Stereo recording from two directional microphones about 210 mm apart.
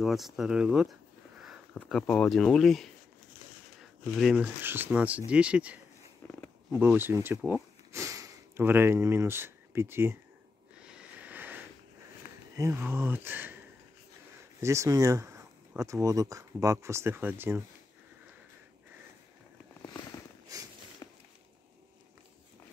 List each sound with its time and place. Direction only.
0.0 s speech: centre (ahead or behind)
4.0 s speech: centre (ahead or behind)
6.2 s a sound: 5° left (ahead or behind)
6.7 s speech: 10° right (ahead or behind)
10.8 s vehicle: 5° right (ahead or behind)
12.5 s speech: 10° right (ahead or behind)
14.6 s speech: 15° right (ahead or behind)
20.5 s walk: 15° right (ahead or behind)
21.0 s a sound: 15° left (ahead or behind)